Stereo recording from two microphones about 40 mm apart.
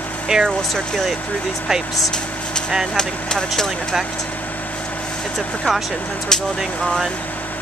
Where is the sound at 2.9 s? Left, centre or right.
Centre.